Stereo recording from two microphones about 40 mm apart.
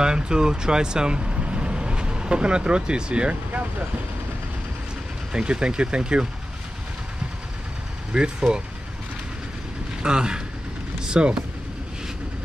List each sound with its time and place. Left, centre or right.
0.0 s speech: right
5.3 s speech: right
8.1 s speech: right
10.0 s speech: centre